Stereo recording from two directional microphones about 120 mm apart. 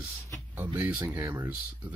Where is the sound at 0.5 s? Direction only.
15° right (ahead or behind).